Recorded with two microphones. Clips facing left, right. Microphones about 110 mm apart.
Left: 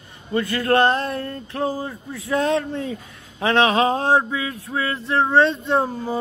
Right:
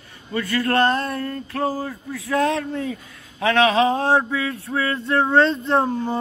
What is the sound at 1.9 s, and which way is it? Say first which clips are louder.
A man's voice: even; 25° left (ahead or behind).